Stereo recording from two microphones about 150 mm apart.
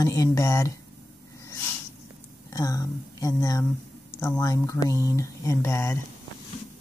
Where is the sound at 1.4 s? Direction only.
15° left (ahead or behind).